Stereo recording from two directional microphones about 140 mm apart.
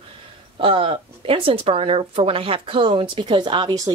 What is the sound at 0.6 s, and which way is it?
Speech, 40° right (ahead or behind).